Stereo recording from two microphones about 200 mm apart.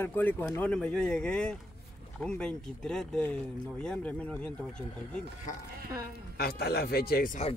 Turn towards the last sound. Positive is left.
turn(degrees=45)  # may be behind; listen again after turning